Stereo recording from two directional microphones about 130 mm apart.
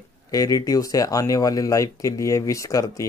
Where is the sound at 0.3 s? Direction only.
25° left (ahead or behind).